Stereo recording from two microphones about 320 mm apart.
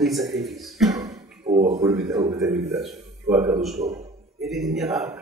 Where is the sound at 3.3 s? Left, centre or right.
Centre.